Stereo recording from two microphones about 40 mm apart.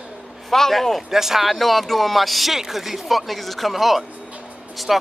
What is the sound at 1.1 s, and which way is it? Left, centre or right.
Speech, centre.